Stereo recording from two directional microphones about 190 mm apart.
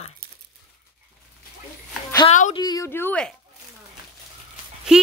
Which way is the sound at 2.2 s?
40° left (ahead or behind).